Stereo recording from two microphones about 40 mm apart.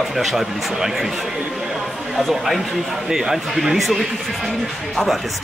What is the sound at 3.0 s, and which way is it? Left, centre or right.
Speech, centre.